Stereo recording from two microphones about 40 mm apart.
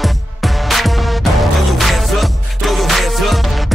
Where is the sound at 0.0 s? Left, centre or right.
Centre.